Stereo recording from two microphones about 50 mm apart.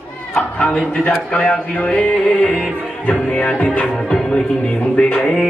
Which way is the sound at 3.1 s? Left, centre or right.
Left.